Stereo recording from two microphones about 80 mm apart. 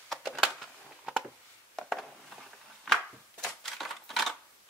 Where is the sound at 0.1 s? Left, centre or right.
Centre.